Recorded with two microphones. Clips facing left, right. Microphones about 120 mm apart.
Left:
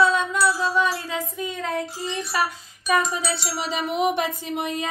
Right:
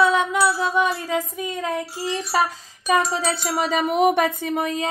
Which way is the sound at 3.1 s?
50° right (ahead or behind).